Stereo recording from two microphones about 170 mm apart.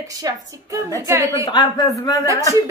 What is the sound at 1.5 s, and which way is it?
Speech, 25° left (ahead or behind).